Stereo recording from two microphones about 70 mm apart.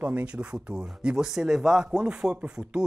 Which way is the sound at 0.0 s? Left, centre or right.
Right.